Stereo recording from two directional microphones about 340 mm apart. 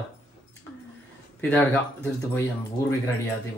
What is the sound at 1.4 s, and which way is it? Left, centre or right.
Speech, centre.